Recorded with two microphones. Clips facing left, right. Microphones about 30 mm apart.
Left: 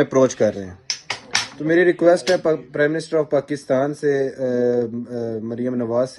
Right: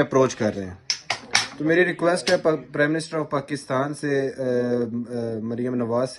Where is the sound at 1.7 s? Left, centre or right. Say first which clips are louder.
Left 5 dB; centre.